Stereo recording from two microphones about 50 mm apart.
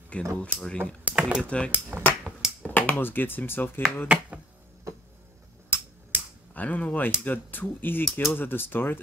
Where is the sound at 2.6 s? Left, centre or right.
Left.